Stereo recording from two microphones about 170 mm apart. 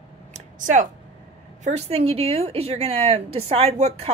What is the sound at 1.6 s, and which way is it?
A woman's voice, 40° right (ahead or behind).